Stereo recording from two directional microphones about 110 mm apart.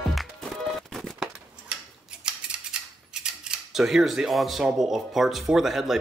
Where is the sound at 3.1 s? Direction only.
5° right (ahead or behind).